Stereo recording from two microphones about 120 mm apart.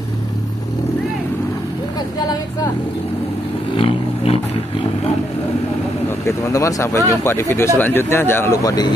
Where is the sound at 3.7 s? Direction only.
50° left (ahead or behind).